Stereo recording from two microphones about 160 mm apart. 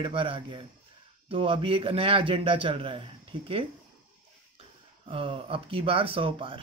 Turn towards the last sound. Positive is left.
turn(degrees=-35)  # may be behind; listen again after turning